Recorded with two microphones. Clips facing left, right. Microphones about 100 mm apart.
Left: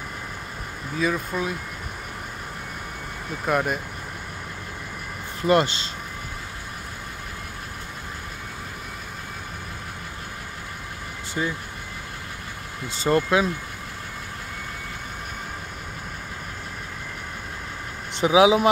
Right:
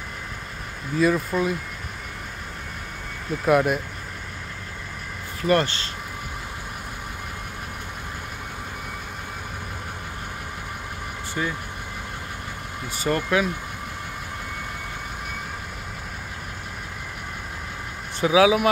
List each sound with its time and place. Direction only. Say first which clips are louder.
0.9 s speech: right 4 dB; centre (ahead or behind)
3.4 s speech: right 4 dB; centre (ahead or behind)
5.5 s speech: left 1 dB; 20° left (ahead or behind)
11.4 s speech: left 1 dB; 10° left (ahead or behind)
12.9 s speech: left 2 dB; 25° left (ahead or behind)
18.2 s speech: left 1 dB; 20° left (ahead or behind)